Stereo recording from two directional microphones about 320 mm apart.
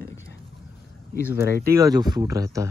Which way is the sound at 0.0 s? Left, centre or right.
Left.